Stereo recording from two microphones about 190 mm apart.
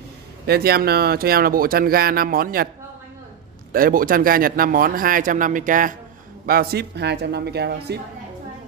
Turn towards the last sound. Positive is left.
turn(degrees=-60)  # may be behind; listen again after turning